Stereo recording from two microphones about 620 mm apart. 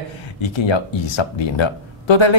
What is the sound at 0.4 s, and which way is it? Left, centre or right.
Speech, left.